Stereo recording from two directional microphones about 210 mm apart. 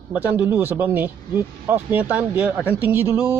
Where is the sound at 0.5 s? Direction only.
10° right (ahead or behind).